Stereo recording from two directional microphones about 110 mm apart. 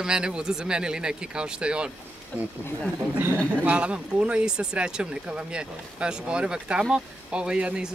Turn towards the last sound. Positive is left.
turn(degrees=-10)  # may be behind; listen again after turning